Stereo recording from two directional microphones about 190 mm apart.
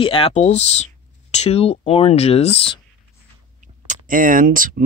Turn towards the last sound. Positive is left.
turn(degrees=-45)  # may be behind; listen again after turning